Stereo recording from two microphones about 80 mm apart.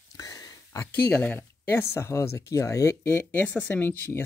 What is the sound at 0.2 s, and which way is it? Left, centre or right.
Whispering, left.